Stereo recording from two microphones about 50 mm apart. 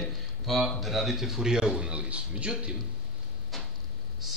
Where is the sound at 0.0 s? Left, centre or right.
Centre; by 2.7 s right.